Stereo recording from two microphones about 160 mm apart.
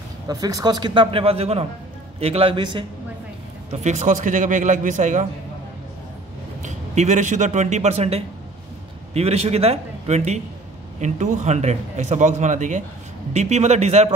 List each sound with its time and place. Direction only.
0.3 s a man's voice: 25° right (ahead or behind)
3.7 s speech: 45° right (ahead or behind)
6.6 s a man's voice: 50° right (ahead or behind)